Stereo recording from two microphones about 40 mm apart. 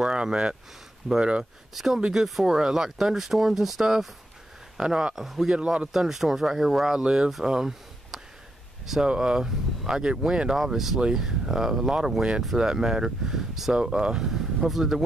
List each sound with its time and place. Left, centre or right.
0.0 s speech: right
1.7 s speech: centre
2.4 s speech: centre
5.1 s speech: centre
5.5 s speech: right
5.9 s speech: centre
10.6 s speech: centre